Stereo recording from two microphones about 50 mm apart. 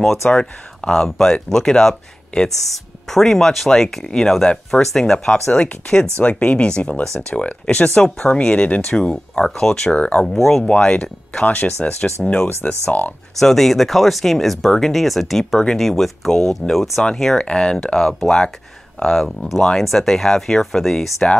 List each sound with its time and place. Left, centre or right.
0.0 s speech: centre
0.3 s speech: centre
5.5 s speech: left
9.9 s speech: left
10.2 s speech: centre
10.7 s speech: left
11.4 s speech: left
13.4 s speech: centre
17.0 s speech: centre